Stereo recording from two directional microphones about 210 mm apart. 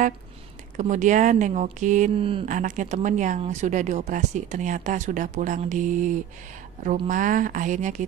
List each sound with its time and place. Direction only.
0.7 s speech: 35° right (ahead or behind)
2.5 s speech: 40° right (ahead or behind)